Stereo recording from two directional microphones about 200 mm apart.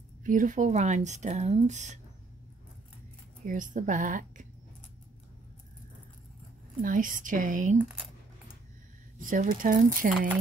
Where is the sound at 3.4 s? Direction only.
40° right (ahead or behind).